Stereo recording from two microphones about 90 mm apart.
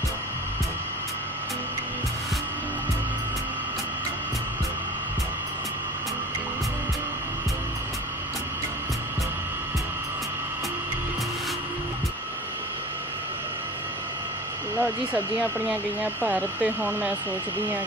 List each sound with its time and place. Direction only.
14.8 s speech: 20° right (ahead or behind)